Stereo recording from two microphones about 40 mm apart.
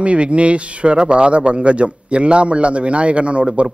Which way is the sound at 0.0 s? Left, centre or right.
Right.